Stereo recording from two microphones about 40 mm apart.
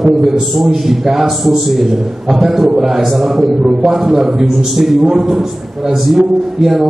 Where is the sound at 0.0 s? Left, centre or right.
Centre.